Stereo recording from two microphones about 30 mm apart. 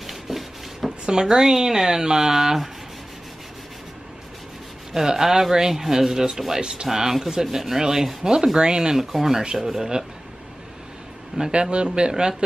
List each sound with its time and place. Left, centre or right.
0.0 s a sound: centre
0.8 s a sound: right
1.3 s speech: centre
4.9 s speech: centre
8.9 s speech: centre
11.4 s speech: right